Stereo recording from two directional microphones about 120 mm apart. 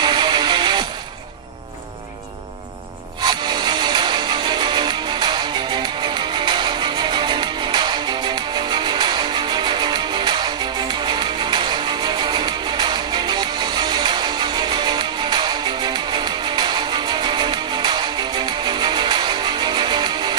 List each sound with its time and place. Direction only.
0.0 s music: 40° right (ahead or behind)
3.2 s music: 35° right (ahead or behind)